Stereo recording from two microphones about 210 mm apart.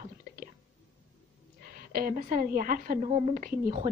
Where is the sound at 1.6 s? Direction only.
45° right (ahead or behind).